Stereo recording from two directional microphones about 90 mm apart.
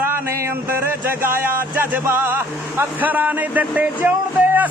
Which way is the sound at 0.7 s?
25° right (ahead or behind).